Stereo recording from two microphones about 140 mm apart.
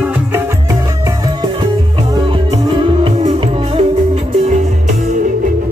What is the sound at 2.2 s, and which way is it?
Music, 35° right (ahead or behind).